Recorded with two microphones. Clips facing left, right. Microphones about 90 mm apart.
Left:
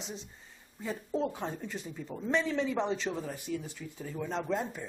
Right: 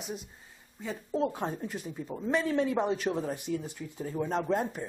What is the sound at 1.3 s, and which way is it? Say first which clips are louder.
A man's voice: right 3 dB; 20° right (ahead or behind).